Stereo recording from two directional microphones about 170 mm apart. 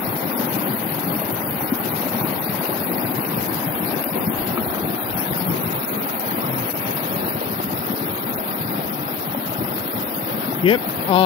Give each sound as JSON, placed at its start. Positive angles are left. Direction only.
{"t": 10.6, "sound": "speech", "side_deg": 30}